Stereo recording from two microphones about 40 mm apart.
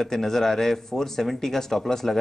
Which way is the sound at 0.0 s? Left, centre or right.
Centre.